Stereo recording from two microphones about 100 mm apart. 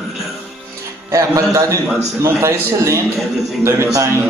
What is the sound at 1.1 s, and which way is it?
A man's voice, 30° right (ahead or behind).